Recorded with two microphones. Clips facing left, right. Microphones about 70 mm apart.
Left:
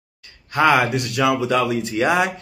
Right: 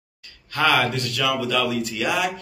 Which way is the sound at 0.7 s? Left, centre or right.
Centre.